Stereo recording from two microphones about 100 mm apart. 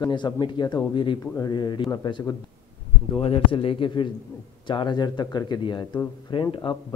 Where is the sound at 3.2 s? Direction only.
70° left (ahead or behind).